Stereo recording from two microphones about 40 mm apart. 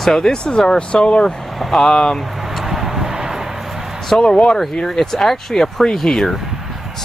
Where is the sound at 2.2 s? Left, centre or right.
Centre.